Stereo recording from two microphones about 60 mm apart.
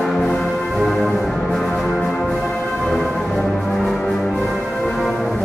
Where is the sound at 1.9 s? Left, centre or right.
Centre.